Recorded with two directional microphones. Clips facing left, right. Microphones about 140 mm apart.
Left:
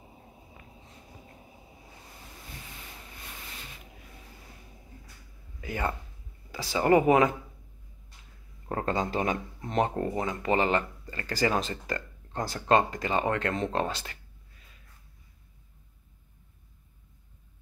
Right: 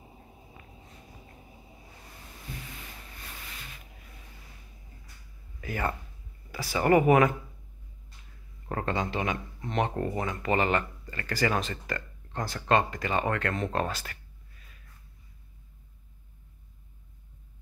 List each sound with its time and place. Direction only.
5.6 s speech: 20° left (ahead or behind)
8.6 s speech: 30° left (ahead or behind)